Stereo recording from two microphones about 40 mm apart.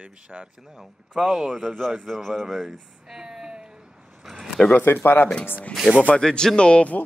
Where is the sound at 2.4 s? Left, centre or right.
Centre.